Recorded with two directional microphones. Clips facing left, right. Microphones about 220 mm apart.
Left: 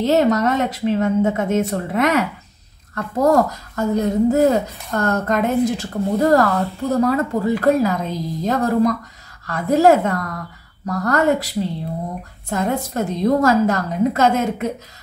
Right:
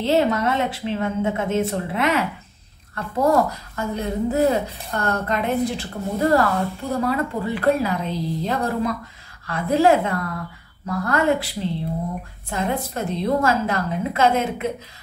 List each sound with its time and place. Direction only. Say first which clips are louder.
0.0 s a woman's voice: left 3 dB; 40° left (ahead or behind)